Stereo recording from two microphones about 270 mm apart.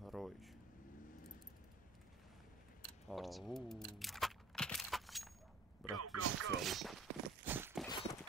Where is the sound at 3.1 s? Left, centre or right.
Centre.